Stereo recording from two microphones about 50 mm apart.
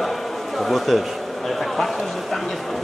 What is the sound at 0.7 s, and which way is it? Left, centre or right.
Speech, centre.